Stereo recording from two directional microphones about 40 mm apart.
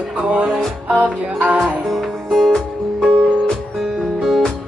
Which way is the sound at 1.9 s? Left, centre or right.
Centre.